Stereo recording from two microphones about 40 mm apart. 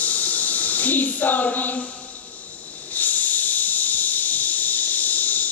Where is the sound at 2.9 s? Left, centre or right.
Left.